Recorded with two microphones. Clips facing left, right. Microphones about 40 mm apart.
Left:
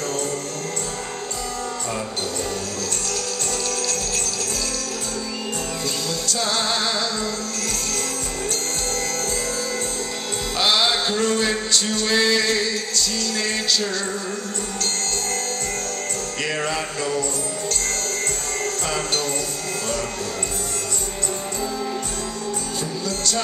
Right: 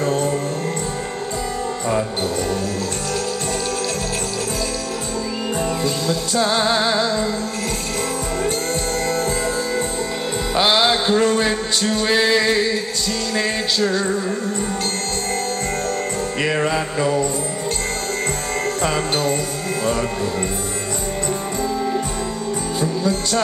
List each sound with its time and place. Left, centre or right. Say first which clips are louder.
6.0 s music: right 6 dB; centre
10.6 s a sound: right 3 dB; centre
13.3 s music: right 3 dB; centre
16.4 s music: right 4 dB; centre
22.8 s music: right 6 dB; right